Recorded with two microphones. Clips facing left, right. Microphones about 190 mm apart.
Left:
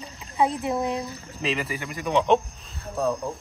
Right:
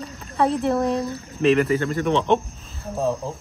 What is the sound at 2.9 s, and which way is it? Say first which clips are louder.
Speech: right 2 dB; centre (ahead or behind).